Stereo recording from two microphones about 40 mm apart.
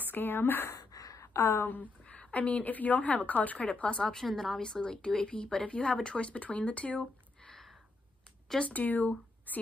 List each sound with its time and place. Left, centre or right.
0.0 s speech: left
1.7 s a woman's voice: left
3.9 s a woman's voice: centre
4.2 s a woman's voice: centre
4.6 s a woman's voice: centre; by 7.1 s left
8.6 s speech: left